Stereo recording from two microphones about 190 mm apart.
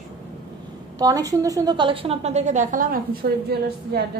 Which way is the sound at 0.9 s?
20° right (ahead or behind).